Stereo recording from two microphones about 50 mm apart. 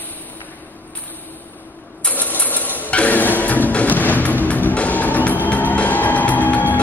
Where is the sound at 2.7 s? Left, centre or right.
Left.